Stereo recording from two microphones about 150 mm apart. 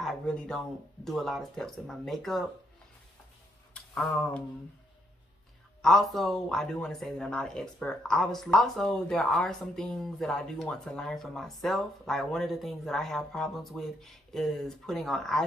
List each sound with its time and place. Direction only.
0.0 s speech: 5° left (ahead or behind)
3.7 s speech: 5° left (ahead or behind)
5.8 s speech: centre (ahead or behind)